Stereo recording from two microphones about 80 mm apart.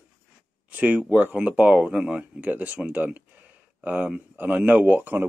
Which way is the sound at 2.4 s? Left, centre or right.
Right.